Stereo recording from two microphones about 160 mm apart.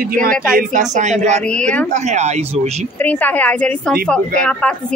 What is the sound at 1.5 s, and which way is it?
Speech, 5° left (ahead or behind).